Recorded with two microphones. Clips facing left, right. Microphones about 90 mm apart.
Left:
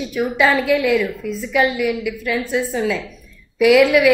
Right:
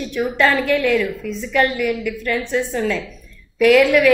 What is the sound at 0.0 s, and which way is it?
A woman's voice, 5° left (ahead or behind).